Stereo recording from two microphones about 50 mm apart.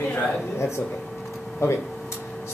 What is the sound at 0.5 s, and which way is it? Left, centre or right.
Speech, left.